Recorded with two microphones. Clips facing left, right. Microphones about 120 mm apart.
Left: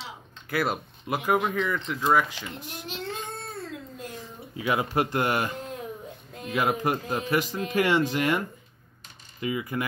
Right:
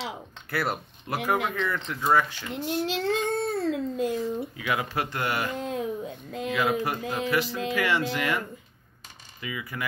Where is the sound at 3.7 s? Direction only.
90° right.